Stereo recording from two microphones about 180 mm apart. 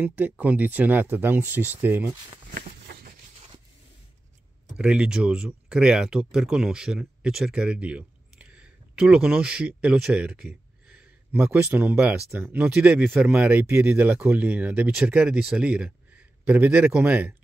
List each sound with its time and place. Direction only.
0.0 s speech: 10° right (ahead or behind)
2.5 s a sound: 55° right (ahead or behind)
4.7 s speech: 5° right (ahead or behind)